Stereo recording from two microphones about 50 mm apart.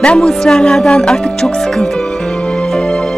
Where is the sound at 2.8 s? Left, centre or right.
Centre.